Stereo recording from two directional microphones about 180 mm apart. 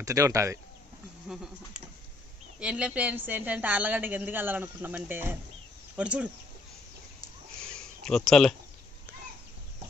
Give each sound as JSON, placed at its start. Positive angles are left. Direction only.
{"t": 0.0, "sound": "speech", "side_deg": -20}
{"t": 1.3, "sound": "speech", "side_deg": -5}
{"t": 7.6, "sound": "a sound", "side_deg": 5}